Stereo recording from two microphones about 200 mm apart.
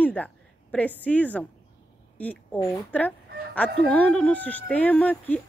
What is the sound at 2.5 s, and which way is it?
Speech, 20° left (ahead or behind).